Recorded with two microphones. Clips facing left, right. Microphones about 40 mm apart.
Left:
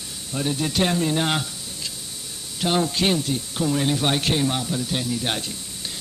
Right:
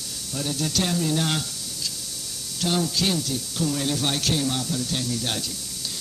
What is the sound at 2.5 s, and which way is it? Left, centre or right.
Speech, left.